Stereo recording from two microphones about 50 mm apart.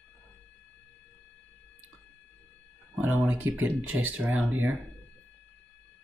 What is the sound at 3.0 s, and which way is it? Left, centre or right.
Speech, right.